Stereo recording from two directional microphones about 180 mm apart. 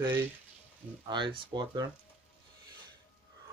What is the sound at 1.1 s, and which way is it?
Speech, 25° right (ahead or behind).